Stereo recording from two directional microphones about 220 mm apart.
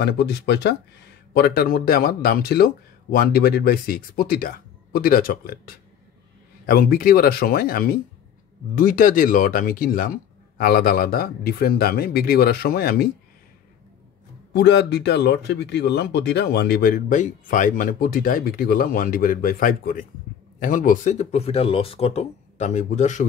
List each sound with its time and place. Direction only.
0.0 s speech: 50° left (ahead or behind)
6.6 s speech: 45° left (ahead or behind)
14.5 s speech: 50° left (ahead or behind); by 23.2 s 35° left (ahead or behind)